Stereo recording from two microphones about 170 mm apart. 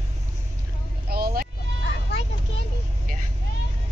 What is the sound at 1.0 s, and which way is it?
Speech, 65° right (ahead or behind).